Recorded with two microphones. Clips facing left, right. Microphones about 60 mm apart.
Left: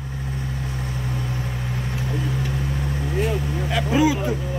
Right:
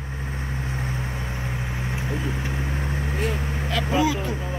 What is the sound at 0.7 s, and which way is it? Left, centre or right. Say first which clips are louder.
Vehicle: left 1 dB; right.